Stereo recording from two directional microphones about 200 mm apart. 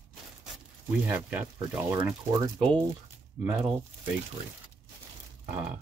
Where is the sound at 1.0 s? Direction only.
10° right (ahead or behind).